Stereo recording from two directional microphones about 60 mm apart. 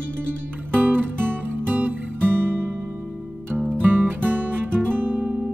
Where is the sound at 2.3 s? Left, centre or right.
Right.